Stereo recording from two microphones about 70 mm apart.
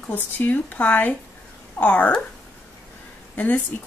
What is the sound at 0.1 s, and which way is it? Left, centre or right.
Speech, left.